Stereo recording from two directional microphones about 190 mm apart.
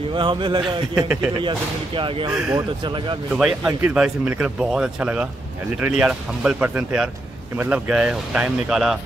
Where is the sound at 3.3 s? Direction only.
5° right (ahead or behind).